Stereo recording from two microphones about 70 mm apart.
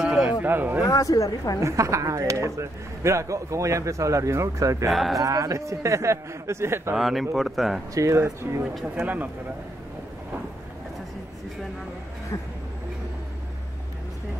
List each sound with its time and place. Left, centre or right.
0.3 s speech: right
0.8 s speech: left
1.6 s speech: right
4.8 s speech: centre
5.2 s speech: right
7.0 s speech: centre
7.9 s speech: right
8.9 s speech: right